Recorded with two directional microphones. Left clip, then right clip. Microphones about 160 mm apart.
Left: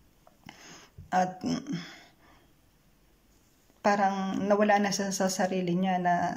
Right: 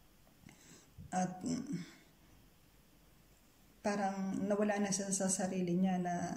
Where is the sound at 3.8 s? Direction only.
15° right (ahead or behind).